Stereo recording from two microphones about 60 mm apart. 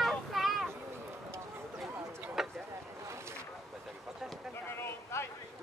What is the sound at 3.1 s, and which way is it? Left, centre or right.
Boat, right.